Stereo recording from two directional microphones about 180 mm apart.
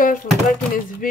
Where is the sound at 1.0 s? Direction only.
50° left (ahead or behind).